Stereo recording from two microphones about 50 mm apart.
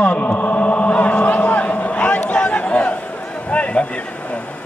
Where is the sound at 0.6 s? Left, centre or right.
Left.